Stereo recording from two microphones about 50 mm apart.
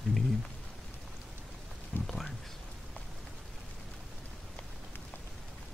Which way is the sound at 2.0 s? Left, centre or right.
Centre.